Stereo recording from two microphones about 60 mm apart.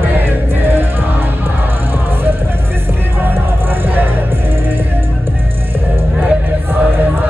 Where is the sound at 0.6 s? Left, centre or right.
Right.